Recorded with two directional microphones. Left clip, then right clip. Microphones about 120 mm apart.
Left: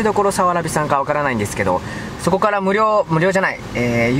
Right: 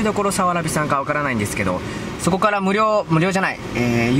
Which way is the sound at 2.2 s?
Centre (ahead or behind).